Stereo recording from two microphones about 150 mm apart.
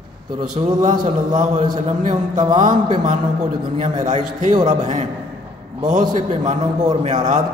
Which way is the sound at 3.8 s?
50° right (ahead or behind).